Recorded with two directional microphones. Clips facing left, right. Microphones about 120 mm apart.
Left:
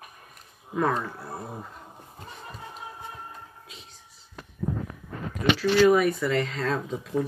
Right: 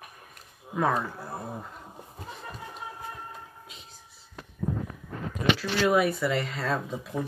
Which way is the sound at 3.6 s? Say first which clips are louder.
Even; centre (ahead or behind).